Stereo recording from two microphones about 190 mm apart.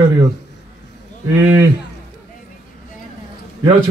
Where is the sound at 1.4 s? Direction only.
15° right (ahead or behind).